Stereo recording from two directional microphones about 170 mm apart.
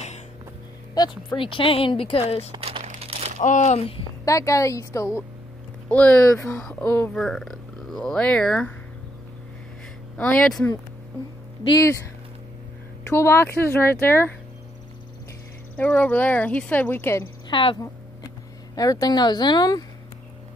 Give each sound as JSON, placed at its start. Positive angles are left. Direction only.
{"t": 0.9, "sound": "speech", "side_deg": 25}
{"t": 2.5, "sound": "crumpling", "side_deg": -35}
{"t": 3.3, "sound": "speech", "side_deg": 45}
{"t": 4.2, "sound": "a woman's voice", "side_deg": 20}
{"t": 10.1, "sound": "speech", "side_deg": 5}
{"t": 11.7, "sound": "a woman's voice", "side_deg": 20}
{"t": 13.1, "sound": "speech", "side_deg": 15}
{"t": 15.7, "sound": "speech", "side_deg": 10}
{"t": 17.5, "sound": "a woman's voice", "side_deg": 30}